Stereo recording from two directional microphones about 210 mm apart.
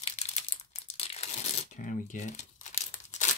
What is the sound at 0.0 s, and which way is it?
Crumpling, 30° left (ahead or behind).